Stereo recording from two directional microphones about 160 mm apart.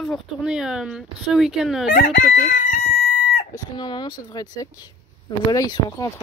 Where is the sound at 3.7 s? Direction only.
30° left (ahead or behind).